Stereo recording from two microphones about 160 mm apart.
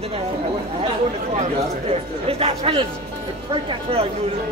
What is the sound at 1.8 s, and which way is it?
Speech, 35° right (ahead or behind).